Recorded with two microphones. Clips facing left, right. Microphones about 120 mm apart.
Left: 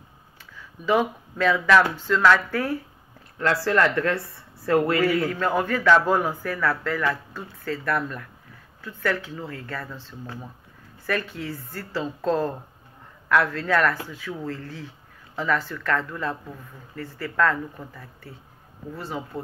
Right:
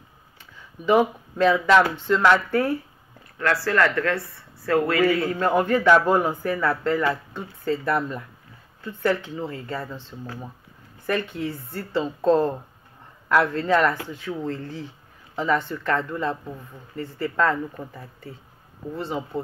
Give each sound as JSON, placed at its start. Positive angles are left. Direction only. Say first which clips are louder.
{"t": 0.8, "sound": "speech", "louder": "right 3 dB", "side_deg": -20}
{"t": 3.3, "sound": "speech", "louder": "even", "side_deg": 15}
{"t": 5.3, "sound": "speech", "louder": "right 3 dB", "side_deg": -15}
{"t": 11.1, "sound": "speech", "louder": "right 2 dB", "side_deg": -20}